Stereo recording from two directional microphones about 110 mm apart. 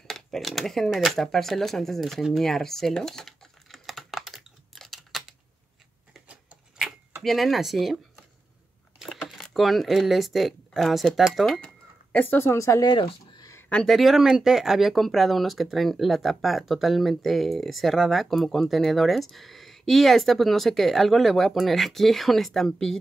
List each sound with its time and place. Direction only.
0.0 s a sound: 5° left (ahead or behind)
7.2 s speech: centre (ahead or behind); by 12.8 s 25° left (ahead or behind)
12.8 s speech: 45° left (ahead or behind)
13.7 s speech: 5° left (ahead or behind)